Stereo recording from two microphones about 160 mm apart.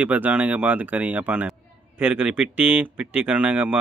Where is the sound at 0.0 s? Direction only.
10° right (ahead or behind).